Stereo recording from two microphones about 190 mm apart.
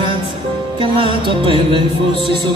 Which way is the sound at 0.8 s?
25° right (ahead or behind).